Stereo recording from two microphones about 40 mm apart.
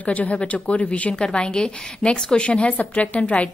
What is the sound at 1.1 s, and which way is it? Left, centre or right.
A woman's voice, left.